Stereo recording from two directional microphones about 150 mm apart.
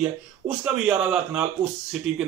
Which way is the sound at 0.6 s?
10° right (ahead or behind).